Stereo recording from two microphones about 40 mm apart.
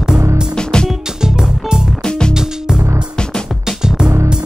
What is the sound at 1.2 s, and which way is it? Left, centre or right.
Music, centre.